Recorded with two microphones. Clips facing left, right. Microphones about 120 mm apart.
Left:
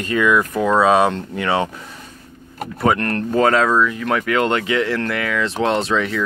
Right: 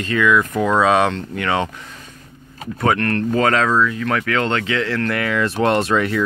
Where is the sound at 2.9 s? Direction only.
15° left (ahead or behind).